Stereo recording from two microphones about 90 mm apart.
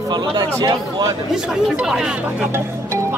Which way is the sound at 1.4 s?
5° right (ahead or behind).